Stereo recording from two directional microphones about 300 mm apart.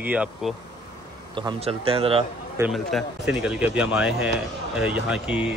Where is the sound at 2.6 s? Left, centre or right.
Centre.